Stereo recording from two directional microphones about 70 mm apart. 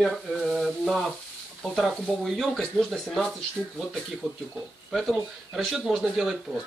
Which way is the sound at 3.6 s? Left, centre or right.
Centre.